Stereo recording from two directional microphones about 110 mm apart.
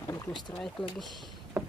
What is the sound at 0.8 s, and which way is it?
Speech, 50° left (ahead or behind).